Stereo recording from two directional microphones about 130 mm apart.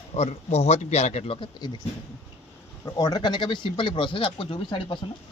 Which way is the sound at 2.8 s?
30° left (ahead or behind).